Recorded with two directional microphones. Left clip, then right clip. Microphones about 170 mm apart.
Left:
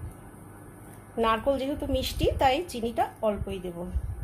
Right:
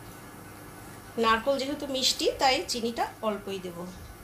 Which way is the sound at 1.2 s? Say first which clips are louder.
Even; 40° left (ahead or behind).